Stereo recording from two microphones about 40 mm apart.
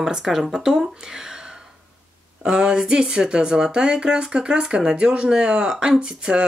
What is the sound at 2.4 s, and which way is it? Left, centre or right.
Speech, centre.